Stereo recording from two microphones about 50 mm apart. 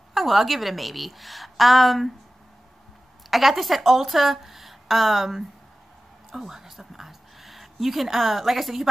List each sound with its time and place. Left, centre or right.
0.1 s a woman's voice: centre
3.3 s a woman's voice: centre